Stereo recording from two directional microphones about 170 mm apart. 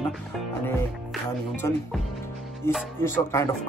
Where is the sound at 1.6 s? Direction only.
15° left (ahead or behind).